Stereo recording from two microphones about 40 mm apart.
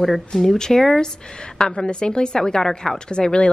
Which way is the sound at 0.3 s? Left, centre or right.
Centre.